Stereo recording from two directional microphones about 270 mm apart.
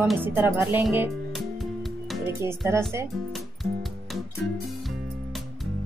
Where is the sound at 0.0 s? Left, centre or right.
Centre.